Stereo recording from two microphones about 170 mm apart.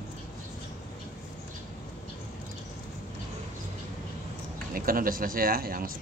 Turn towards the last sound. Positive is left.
turn(degrees=-60)  # may be behind; listen again after turning